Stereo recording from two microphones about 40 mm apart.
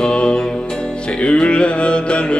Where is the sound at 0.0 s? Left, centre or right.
Left.